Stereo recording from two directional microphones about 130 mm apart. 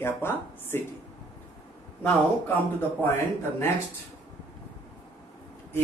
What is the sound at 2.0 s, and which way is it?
A man's voice, 15° left (ahead or behind).